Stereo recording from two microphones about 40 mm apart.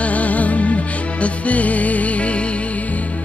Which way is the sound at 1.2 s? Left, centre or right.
Left.